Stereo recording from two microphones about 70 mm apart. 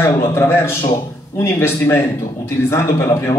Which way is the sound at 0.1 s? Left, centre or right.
Left.